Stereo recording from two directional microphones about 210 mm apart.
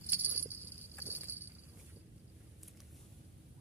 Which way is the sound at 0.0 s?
10° right (ahead or behind).